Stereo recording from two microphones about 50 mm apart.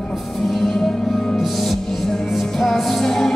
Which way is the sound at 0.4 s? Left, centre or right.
Centre.